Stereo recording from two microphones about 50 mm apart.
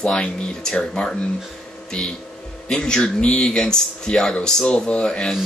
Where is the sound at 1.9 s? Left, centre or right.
Centre.